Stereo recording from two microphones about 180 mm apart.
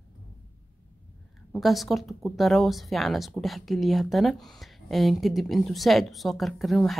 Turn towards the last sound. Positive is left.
turn(degrees=0)  # may be behind; listen again after turning